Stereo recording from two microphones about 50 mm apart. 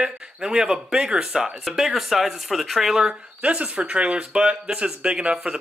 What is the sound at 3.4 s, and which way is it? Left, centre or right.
Speech, right.